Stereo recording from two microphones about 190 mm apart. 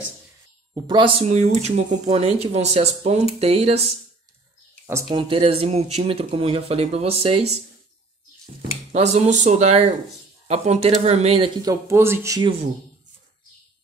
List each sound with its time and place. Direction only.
0.7 s speech: 25° right (ahead or behind)
5.1 s speech: 30° right (ahead or behind)
8.9 s speech: 35° right (ahead or behind); by 12.5 s 20° right (ahead or behind)